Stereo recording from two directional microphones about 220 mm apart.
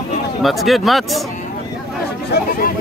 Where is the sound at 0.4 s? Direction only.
Centre (ahead or behind).